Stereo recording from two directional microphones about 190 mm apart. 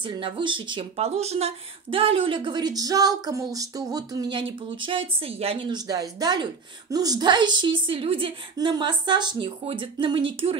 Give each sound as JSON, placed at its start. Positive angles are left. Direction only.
{"t": 0.0, "sound": "speech", "side_deg": -25}